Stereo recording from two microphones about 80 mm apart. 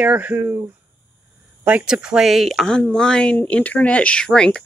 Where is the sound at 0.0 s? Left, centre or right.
Right.